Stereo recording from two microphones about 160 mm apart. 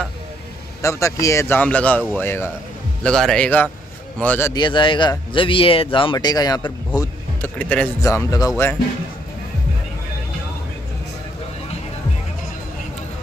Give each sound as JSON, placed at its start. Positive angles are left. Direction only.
{"t": 0.8, "sound": "a man's voice", "side_deg": 20}
{"t": 4.6, "sound": "a man's voice", "side_deg": 30}
{"t": 7.0, "sound": "speech", "side_deg": 10}